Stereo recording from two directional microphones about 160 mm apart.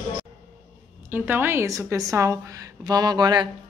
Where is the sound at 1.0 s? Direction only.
10° right (ahead or behind).